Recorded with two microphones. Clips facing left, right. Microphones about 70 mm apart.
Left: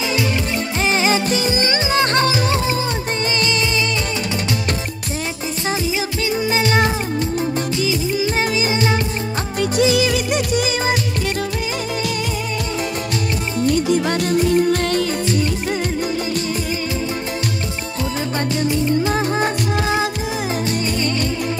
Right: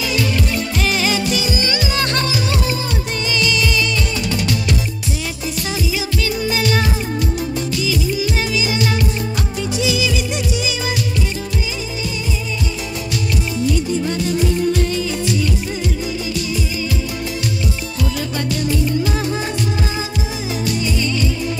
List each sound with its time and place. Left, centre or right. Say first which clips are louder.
0.8 s music: left 3 dB; left
3.3 s music of bollywood: right 3 dB; left
6.4 s music: left 3 dB; left
9.6 s music: left 5 dB; left
13.6 s music: left 3 dB; left
13.8 s music: left 2 dB; left
18.7 s music: left 2 dB; left